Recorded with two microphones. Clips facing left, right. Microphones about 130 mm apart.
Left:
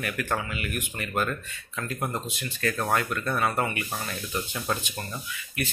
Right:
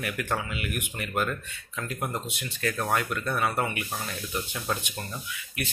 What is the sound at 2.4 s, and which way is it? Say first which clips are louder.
Speech: left 2 dB; 10° right (ahead or behind).